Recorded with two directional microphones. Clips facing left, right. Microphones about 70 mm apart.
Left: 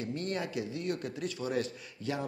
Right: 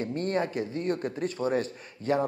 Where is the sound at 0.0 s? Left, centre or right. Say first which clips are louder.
Right 6 dB; right.